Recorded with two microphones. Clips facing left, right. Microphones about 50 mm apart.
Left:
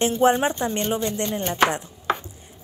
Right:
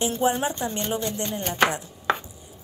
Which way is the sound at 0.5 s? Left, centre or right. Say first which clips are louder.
Left 3 dB; left.